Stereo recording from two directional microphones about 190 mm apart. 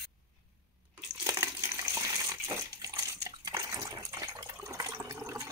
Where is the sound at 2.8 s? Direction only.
15° right (ahead or behind).